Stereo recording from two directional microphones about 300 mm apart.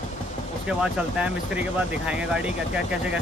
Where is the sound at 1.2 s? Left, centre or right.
Centre.